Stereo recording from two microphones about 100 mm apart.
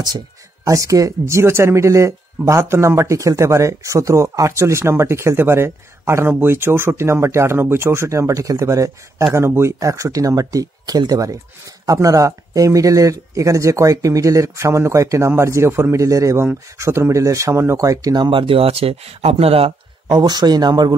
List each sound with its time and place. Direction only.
0.7 s speech: 30° right (ahead or behind); by 19.7 s 75° right (ahead or behind)
20.1 s speech: 45° right (ahead or behind)